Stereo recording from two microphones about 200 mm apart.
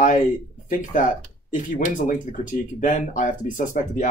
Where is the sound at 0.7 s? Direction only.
40° left (ahead or behind).